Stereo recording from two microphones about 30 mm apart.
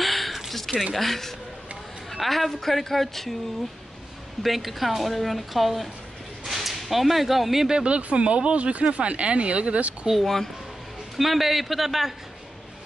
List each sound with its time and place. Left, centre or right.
0.0 s a sound: centre
0.9 s a woman's voice: centre
4.4 s a woman's voice: centre
7.8 s speech: right
10.1 s speech: centre
11.1 s a woman's voice: centre